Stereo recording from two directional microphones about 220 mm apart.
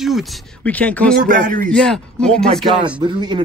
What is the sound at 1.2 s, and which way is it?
Speech, 35° right (ahead or behind).